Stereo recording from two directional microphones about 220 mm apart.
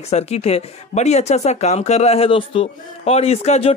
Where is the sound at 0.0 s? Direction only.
30° left (ahead or behind).